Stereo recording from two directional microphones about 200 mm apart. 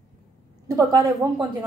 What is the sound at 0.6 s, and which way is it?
Speech, 15° right (ahead or behind).